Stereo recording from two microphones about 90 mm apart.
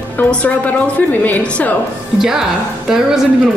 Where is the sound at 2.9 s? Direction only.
5° right (ahead or behind).